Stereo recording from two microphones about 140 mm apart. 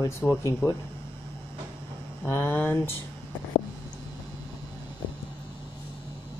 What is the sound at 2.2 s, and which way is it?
Speech, 15° left (ahead or behind).